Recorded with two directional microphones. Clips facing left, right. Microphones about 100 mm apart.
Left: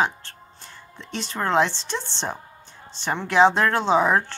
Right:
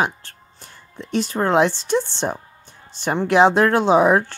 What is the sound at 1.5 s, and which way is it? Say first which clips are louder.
A man's voice: right 3 dB; 50° right (ahead or behind).